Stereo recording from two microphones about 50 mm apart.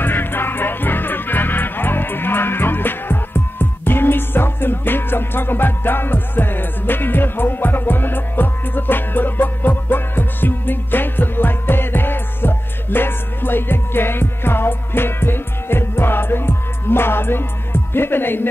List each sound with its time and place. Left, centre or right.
0.0 s music: left